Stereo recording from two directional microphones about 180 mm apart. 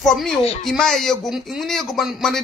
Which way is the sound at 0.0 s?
Centre (ahead or behind).